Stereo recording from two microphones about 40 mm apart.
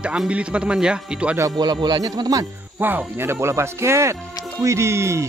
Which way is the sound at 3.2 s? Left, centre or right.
Right.